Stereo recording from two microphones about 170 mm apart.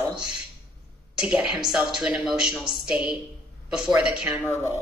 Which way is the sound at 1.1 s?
5° right (ahead or behind).